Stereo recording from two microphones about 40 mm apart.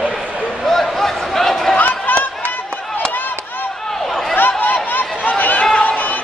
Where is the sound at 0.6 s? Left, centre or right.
Centre.